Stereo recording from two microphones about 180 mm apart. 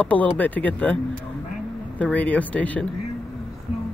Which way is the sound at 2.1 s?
10° left (ahead or behind).